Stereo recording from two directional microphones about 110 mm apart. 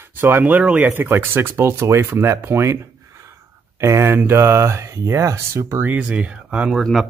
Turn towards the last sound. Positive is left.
turn(degrees=-5)  # may be behind; listen again after turning